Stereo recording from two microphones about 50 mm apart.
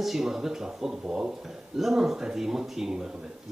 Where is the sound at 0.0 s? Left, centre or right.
Centre.